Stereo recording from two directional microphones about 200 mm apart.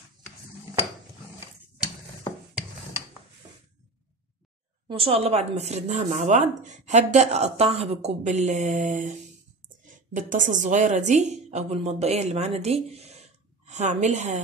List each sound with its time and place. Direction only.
4.8 s a woman's voice: 25° right (ahead or behind)